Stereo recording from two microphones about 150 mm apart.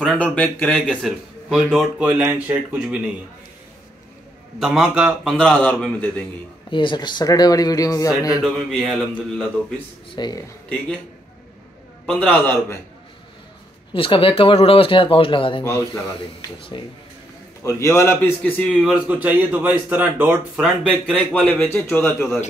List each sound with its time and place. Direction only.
0.0 s a man's voice: 5° left (ahead or behind)
1.5 s a man's voice: 5° right (ahead or behind)
4.6 s a man's voice: centre (ahead or behind)
6.7 s speech: 35° left (ahead or behind)
8.4 s a man's voice: centre (ahead or behind)
10.1 s speech: 30° left (ahead or behind)
12.1 s a man's voice: 5° left (ahead or behind)
13.9 s speech: 35° left (ahead or behind)
15.6 s speech: 20° left (ahead or behind)
16.7 s speech: 35° left (ahead or behind)
17.6 s a man's voice: 20° left (ahead or behind); by 20.6 s 10° right (ahead or behind)
21.1 s a man's voice: 5° left (ahead or behind)